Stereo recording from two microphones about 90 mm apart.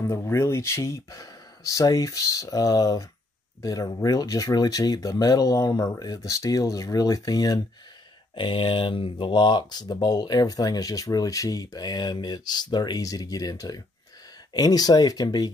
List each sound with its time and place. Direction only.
0.1 s speech: 35° left (ahead or behind)
8.4 s speech: 70° left (ahead or behind); by 15.5 s 45° left (ahead or behind)